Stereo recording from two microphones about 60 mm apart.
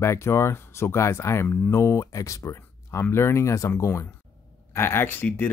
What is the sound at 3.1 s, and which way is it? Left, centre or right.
Speech, left.